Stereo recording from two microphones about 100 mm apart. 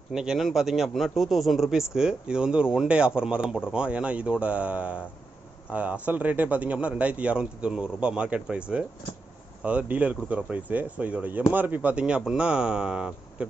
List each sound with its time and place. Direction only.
0.1 s a man's voice: 5° right (ahead or behind)